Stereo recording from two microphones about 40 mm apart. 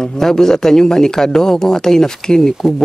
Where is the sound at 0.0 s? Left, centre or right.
Centre.